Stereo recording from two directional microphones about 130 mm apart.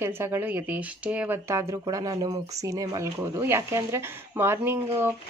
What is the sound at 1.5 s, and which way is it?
Speech, 25° right (ahead or behind).